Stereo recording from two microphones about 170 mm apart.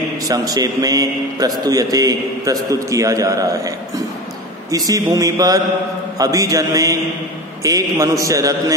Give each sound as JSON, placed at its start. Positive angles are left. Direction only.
{"t": 0.3, "sound": "a man's voice", "side_deg": -20}